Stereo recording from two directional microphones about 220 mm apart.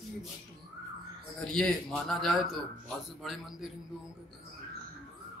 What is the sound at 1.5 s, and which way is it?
A man's voice, centre (ahead or behind).